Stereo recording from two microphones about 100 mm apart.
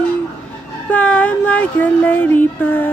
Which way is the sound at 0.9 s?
15° left (ahead or behind).